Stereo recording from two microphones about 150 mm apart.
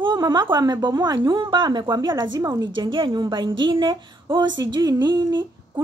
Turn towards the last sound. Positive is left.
turn(degrees=-30)  # may be behind; listen again after turning